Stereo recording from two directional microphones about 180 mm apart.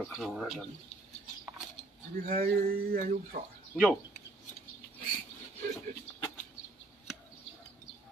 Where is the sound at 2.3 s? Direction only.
55° right (ahead or behind).